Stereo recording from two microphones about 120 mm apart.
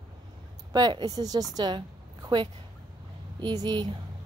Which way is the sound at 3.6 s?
40° right (ahead or behind).